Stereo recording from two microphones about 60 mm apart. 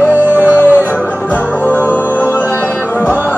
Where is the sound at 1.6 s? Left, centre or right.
Left.